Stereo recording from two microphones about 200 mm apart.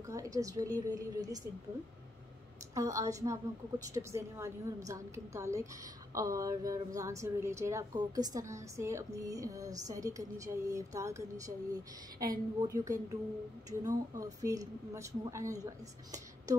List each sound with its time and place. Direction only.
0.0 s a woman's voice: 15° right (ahead or behind)
2.7 s a woman's voice: 15° right (ahead or behind)